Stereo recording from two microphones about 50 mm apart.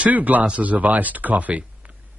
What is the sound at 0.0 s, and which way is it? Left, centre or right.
Speech, right.